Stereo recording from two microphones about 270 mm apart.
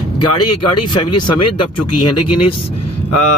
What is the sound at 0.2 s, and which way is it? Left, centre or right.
Speech, left.